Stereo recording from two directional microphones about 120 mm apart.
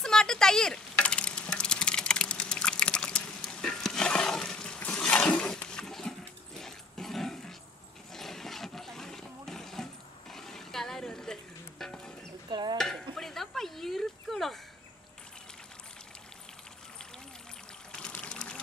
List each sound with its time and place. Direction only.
0.0 s speech: 5° left (ahead or behind)
0.9 s typing: 10° left (ahead or behind)
8.1 s a sound: 5° left (ahead or behind)
11.8 s music: 5° left (ahead or behind)
12.4 s stir: 40° right (ahead or behind)
12.7 s a sound: 5° left (ahead or behind)
17.9 s pour: 10° left (ahead or behind)